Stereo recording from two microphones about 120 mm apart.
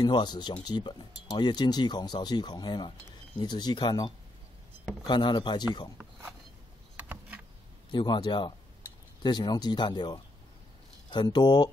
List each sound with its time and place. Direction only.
0.0 s speech: 35° left (ahead or behind)
7.0 s a sound: 10° right (ahead or behind)
7.9 s speech: 40° left (ahead or behind)